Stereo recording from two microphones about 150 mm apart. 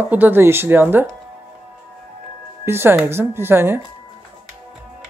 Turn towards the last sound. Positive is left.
turn(degrees=-15)  # may be behind; listen again after turning